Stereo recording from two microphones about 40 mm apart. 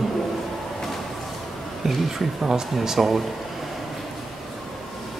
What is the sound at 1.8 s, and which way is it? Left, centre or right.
Speech, centre.